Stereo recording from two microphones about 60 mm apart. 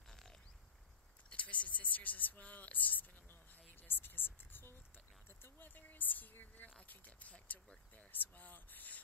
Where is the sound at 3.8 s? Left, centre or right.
Left.